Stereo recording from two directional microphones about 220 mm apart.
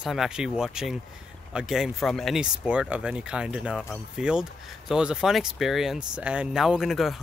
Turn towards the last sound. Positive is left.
turn(degrees=0)  # may be behind; listen again after turning